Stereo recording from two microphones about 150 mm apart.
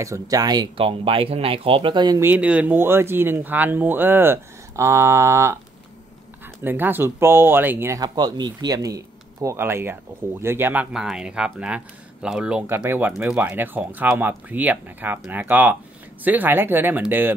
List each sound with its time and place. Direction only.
0.0 s speech: 20° right (ahead or behind)
0.8 s speech: 40° right (ahead or behind)
2.1 s speech: 10° right (ahead or behind)
6.6 s speech: 15° right (ahead or behind)